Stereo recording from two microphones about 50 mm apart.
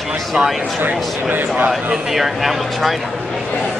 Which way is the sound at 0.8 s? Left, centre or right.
Right.